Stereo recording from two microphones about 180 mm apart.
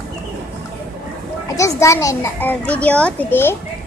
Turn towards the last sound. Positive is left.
turn(degrees=10)  # may be behind; listen again after turning